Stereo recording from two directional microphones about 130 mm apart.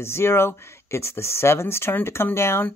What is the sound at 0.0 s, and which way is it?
Speech, 20° left (ahead or behind).